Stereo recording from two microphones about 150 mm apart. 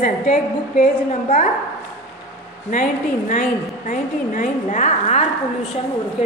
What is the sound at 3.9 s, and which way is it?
A woman's voice, 60° left (ahead or behind).